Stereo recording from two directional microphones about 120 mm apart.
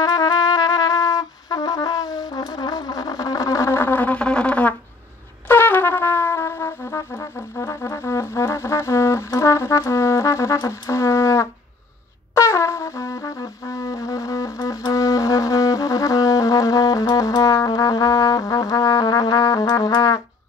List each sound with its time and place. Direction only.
0.0 s trumpet: 35° left (ahead or behind)
12.4 s music: 25° left (ahead or behind)